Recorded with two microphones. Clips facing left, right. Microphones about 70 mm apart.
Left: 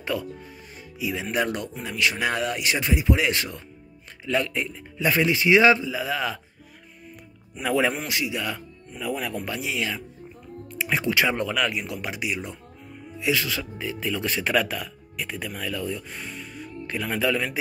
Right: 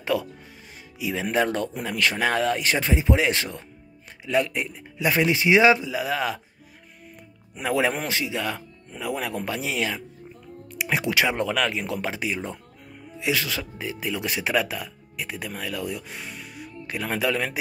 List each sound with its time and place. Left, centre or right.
0.1 s speech: right
0.9 s speech: right
1.8 s speech: right
8.1 s speech: right
9.0 s speech: right
9.4 s speech: right
13.2 s speech: right; by 15.5 s centre
15.9 s music: centre
17.2 s speech: right